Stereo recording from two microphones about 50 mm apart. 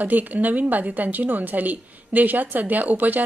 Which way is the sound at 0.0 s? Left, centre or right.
Right.